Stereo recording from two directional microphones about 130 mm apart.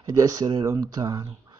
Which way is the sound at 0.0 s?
35° right (ahead or behind).